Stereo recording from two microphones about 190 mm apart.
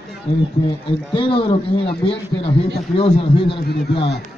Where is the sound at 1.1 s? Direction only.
25° left (ahead or behind).